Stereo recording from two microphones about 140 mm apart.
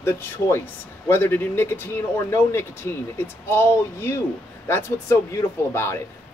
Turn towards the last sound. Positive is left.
turn(degrees=20)  # may be behind; listen again after turning